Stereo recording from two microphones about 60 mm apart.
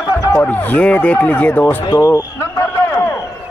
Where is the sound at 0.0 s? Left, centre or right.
Left.